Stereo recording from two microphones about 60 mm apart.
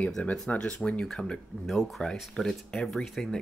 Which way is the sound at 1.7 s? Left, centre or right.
Centre.